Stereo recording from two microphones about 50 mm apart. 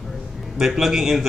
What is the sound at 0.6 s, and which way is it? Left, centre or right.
Speech, centre.